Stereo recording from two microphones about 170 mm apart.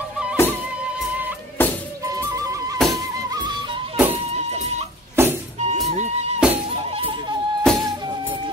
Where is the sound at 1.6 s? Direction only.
10° left (ahead or behind).